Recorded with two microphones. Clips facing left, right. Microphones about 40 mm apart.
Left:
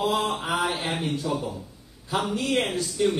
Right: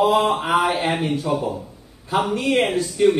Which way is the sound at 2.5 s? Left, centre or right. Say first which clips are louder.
Right 6 dB; centre.